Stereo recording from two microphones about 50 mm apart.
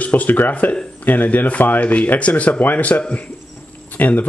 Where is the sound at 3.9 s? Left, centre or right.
Left.